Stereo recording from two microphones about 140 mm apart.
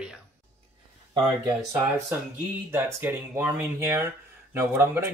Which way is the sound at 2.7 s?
15° right (ahead or behind).